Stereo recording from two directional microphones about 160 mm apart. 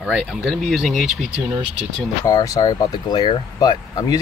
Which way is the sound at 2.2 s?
20° left (ahead or behind).